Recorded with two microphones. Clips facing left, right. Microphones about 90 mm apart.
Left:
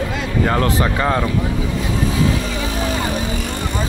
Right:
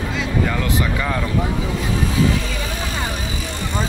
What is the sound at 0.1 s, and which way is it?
Vehicle, 50° left (ahead or behind).